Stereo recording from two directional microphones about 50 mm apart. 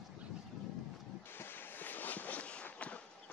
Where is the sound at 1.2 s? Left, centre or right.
Left.